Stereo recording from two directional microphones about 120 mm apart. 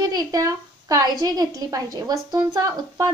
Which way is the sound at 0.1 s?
30° right (ahead or behind).